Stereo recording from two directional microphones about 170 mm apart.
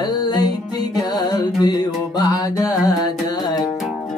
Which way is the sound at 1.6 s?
25° left (ahead or behind).